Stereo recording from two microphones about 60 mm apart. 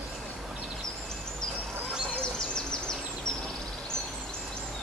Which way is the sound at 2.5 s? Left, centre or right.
Centre.